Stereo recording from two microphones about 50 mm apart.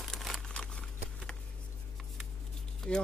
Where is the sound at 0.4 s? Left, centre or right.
Centre.